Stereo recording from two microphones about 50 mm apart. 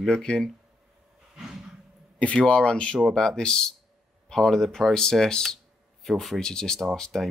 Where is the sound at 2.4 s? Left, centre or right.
Left.